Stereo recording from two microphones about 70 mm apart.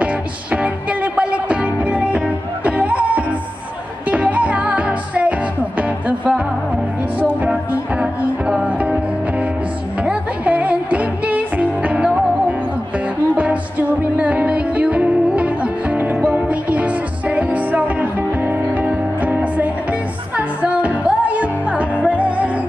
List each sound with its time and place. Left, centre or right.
0.0 s music: centre
10.0 s music: centre
18.4 s music: right